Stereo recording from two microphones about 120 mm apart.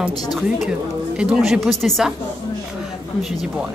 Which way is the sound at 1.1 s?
5° right (ahead or behind).